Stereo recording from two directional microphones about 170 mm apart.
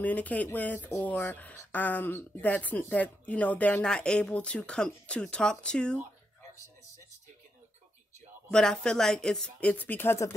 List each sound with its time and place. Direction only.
0.0 s speech: 10° left (ahead or behind)
8.5 s speech: 5° left (ahead or behind)